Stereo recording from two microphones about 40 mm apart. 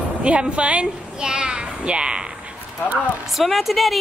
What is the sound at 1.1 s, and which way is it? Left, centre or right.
A child's voice, centre.